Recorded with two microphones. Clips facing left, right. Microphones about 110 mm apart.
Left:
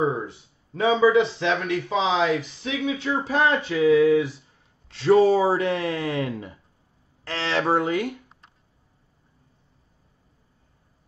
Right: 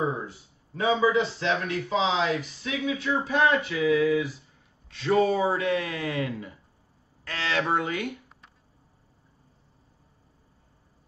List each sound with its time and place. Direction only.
0.0 s a man's voice: 20° left (ahead or behind)